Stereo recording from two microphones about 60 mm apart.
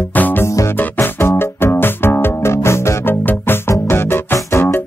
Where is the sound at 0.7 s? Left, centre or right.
Left.